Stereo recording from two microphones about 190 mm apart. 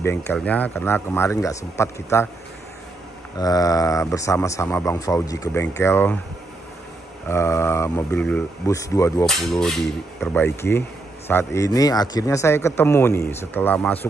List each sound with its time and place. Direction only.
0.0 s speech: 10° left (ahead or behind)
3.3 s speech: 20° left (ahead or behind)
7.2 s speech: 15° left (ahead or behind)
9.2 s speech: centre (ahead or behind)
11.2 s speech: 15° left (ahead or behind)